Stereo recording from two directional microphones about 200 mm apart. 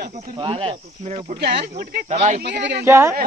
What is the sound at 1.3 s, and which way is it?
Speech, 55° right (ahead or behind).